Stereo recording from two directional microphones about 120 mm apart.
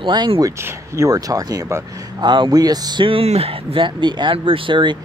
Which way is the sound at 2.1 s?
40° right (ahead or behind).